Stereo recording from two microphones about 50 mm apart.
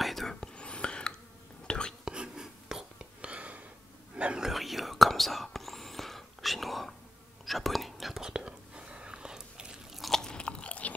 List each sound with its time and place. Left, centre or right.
0.0 s whispering: centre
0.4 s whispering: centre
2.0 s whispering: centre
3.3 s a sound: right
4.1 s whispering: right
4.4 s whispering: centre
8.2 s whispering: centre
9.9 s biting: centre
10.2 s chewing: centre